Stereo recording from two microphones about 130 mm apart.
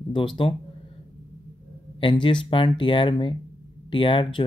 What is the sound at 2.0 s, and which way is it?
Speech, 40° left (ahead or behind).